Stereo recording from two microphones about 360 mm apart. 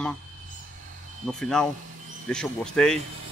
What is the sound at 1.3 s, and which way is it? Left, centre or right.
Speech, centre.